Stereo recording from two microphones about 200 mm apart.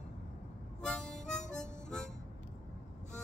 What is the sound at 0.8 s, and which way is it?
Harmonica, 5° left (ahead or behind).